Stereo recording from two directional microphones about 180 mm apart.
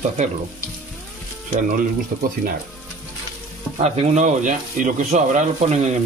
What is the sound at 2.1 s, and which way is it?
Speech, 50° right (ahead or behind).